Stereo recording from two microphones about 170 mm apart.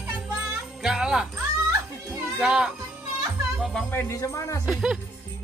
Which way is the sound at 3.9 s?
15° left (ahead or behind).